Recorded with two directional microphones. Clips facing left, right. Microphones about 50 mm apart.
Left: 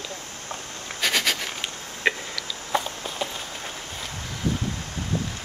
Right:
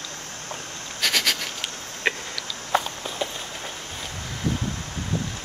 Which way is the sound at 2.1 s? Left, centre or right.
Centre.